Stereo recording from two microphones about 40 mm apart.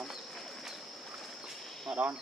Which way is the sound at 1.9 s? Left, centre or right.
Right.